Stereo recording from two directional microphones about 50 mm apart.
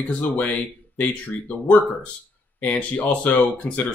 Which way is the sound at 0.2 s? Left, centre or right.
Left.